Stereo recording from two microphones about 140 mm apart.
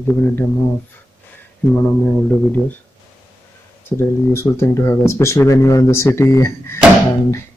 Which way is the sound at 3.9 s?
20° left (ahead or behind).